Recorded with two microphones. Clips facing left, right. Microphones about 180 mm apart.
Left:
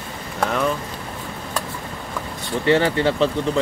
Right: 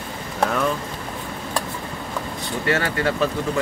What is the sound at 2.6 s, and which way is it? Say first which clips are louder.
Speech: left 5 dB; 20° left (ahead or behind).